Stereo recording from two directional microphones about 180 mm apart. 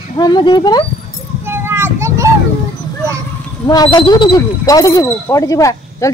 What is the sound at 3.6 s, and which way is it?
Speech, 20° left (ahead or behind).